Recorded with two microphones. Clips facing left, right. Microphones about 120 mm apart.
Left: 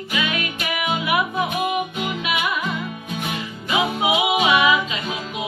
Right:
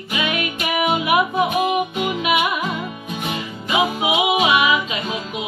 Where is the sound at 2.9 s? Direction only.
10° right (ahead or behind).